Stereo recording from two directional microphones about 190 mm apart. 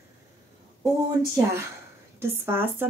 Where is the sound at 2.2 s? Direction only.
10° right (ahead or behind).